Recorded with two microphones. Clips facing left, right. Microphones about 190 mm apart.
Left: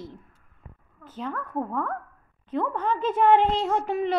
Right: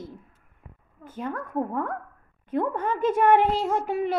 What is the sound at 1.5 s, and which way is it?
A woman's voice, 15° right (ahead or behind).